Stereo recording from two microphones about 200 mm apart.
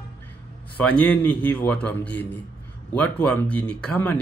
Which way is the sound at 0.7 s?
5° left (ahead or behind).